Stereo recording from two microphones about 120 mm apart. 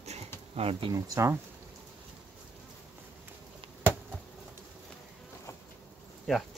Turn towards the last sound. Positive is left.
turn(degrees=5)  # may be behind; listen again after turning